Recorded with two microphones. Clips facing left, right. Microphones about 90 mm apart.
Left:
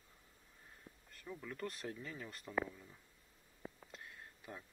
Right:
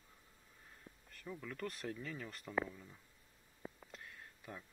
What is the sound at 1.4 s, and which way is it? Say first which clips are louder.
Speech: even; 25° left (ahead or behind).